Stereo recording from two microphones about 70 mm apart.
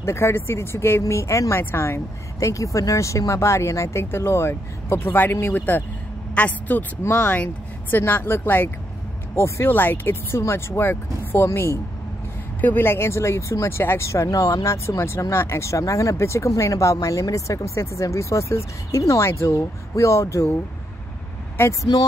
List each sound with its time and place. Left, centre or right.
0.0 s speech: left
1.6 s speech: left
2.4 s speech: left
7.0 s speech: left
9.7 s speech: left